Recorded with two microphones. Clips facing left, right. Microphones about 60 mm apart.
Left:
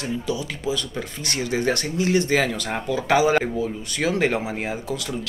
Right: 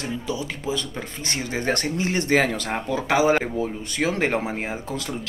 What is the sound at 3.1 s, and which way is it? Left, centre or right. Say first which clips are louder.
Speech: left 1 dB; right.